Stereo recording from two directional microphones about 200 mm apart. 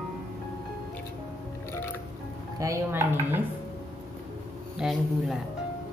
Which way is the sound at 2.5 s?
15° right (ahead or behind).